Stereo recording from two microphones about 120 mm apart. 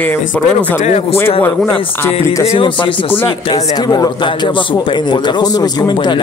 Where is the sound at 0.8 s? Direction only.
70° left (ahead or behind).